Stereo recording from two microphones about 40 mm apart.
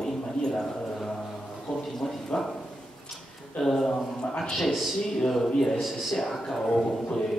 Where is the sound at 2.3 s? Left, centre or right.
Centre.